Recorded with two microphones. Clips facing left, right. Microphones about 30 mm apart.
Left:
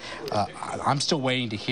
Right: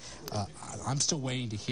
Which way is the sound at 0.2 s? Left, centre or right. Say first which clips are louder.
Left 11 dB; left.